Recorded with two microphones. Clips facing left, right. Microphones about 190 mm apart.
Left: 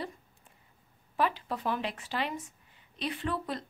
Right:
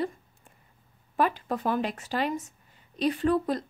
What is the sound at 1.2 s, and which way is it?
A woman's voice, 45° right (ahead or behind).